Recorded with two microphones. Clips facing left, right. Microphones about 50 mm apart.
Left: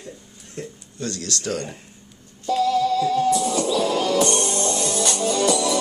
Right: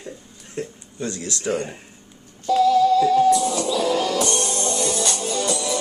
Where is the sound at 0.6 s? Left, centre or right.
Centre.